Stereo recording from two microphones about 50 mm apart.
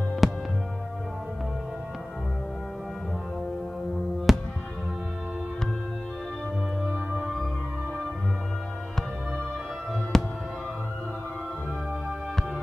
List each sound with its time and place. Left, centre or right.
0.2 s music: centre
4.3 s music: centre
6.9 s music: right
10.1 s music: centre